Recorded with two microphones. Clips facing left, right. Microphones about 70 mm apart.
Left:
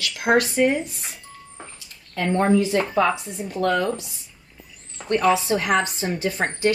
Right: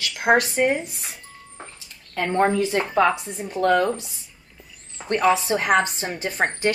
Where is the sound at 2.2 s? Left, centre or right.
Right.